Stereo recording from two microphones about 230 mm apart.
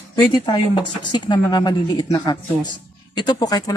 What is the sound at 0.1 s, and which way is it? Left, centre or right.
Speech, centre.